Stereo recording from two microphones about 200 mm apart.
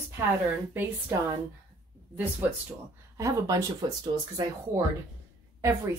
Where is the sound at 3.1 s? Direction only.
15° right (ahead or behind).